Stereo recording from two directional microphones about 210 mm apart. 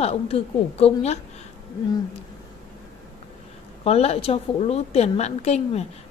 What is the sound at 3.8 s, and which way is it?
A woman's voice, 30° left (ahead or behind).